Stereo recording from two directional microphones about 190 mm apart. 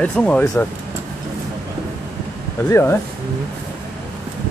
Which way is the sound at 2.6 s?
15° left (ahead or behind).